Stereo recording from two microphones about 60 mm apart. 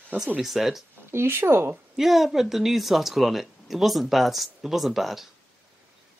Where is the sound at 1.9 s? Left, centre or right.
Centre.